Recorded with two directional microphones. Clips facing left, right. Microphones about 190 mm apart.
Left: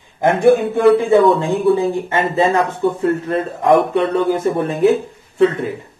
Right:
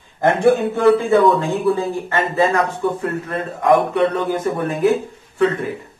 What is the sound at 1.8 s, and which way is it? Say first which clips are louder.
Speech: left 3 dB; 20° left (ahead or behind).